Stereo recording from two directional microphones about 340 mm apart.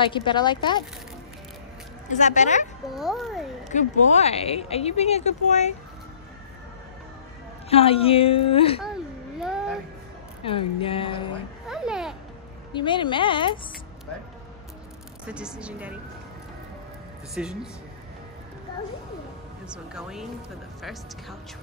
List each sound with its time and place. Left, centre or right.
0.0 s a woman's voice: centre
2.1 s speech: left
2.9 s a woman's voice: centre
3.7 s speech: centre
7.7 s a woman's voice: centre
8.8 s a sound: centre
10.4 s a woman's voice: centre
11.6 s a sound: centre
12.7 s a woman's voice: centre
15.2 s a woman's voice: centre
17.3 s a woman's voice: centre
19.7 s a woman's voice: centre